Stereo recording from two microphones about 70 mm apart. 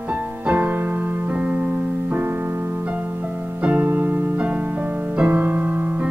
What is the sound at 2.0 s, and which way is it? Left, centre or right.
Piano, right.